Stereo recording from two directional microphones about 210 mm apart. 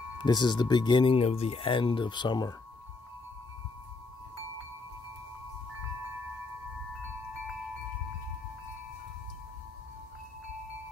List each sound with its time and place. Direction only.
0.2 s speech: 20° left (ahead or behind)